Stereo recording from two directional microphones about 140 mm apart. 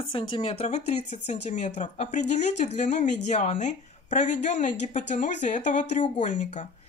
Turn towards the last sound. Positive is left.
turn(degrees=60)  # may be behind; listen again after turning